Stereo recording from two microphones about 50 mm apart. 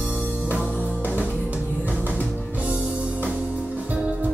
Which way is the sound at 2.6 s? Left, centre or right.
Right.